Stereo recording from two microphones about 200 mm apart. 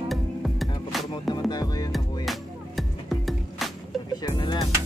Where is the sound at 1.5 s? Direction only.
20° left (ahead or behind).